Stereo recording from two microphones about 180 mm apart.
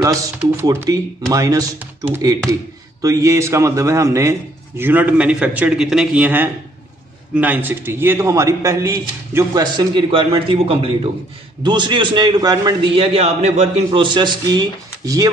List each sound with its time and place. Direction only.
0.0 s a man's voice: 20° right (ahead or behind)
3.0 s a man's voice: 15° right (ahead or behind); by 13.8 s 35° right (ahead or behind)
13.8 s a man's voice: 25° right (ahead or behind)